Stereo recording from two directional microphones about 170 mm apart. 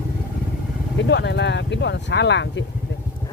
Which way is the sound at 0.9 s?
90° left.